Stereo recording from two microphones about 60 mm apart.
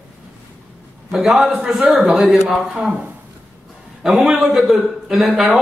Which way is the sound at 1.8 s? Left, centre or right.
Right.